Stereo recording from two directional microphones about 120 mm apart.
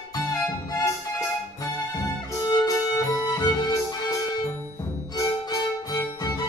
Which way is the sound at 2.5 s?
30° left (ahead or behind).